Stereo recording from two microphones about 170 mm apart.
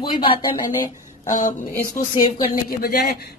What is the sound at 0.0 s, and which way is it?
Speech, 30° left (ahead or behind).